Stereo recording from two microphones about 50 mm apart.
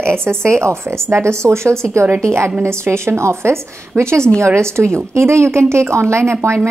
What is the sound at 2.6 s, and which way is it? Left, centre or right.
A woman's voice, right.